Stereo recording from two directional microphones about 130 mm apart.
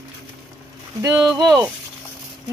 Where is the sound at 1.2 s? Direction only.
30° right (ahead or behind).